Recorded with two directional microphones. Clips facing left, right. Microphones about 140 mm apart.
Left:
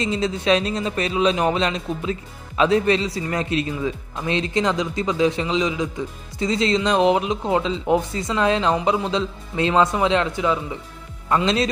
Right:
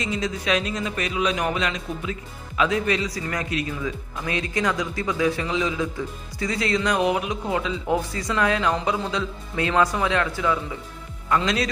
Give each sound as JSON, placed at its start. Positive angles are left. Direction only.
{"t": 0.0, "sound": "a man's voice", "side_deg": 30}